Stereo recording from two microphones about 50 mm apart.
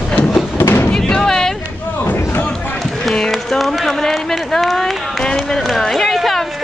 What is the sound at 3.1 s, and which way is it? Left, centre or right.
Run, centre.